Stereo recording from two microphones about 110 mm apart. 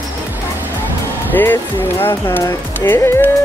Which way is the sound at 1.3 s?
20° left (ahead or behind).